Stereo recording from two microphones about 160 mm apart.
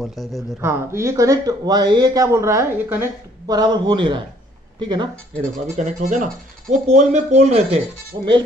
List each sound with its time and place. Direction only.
0.0 s speech: centre (ahead or behind)
0.6 s speech: 15° right (ahead or behind)
5.8 s speech: 50° right (ahead or behind)
8.1 s speech: 30° right (ahead or behind)